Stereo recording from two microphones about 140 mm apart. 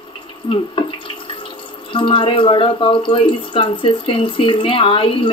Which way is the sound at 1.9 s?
40° left (ahead or behind).